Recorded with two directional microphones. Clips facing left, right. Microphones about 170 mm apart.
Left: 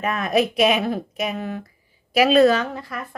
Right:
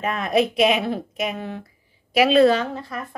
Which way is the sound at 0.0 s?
25° right (ahead or behind).